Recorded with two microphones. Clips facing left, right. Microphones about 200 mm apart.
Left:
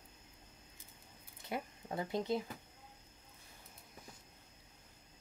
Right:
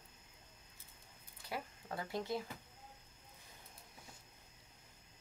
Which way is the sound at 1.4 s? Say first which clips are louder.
Left 3 dB; 20° left (ahead or behind).